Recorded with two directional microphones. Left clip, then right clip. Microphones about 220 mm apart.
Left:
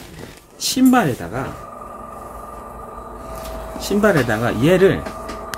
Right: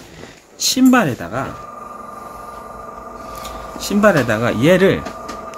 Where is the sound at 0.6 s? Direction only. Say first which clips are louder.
Right 2 dB; 30° right (ahead or behind).